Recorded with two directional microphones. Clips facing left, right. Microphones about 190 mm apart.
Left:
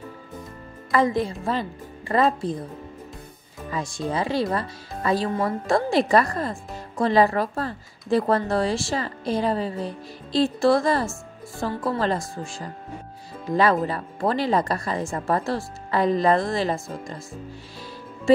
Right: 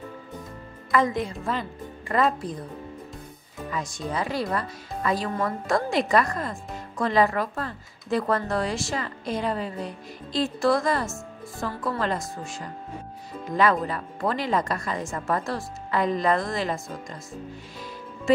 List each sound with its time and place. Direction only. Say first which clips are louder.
0.9 s speech: left 2 dB; 35° left (ahead or behind)
3.7 s speech: left 3 dB; 30° left (ahead or behind)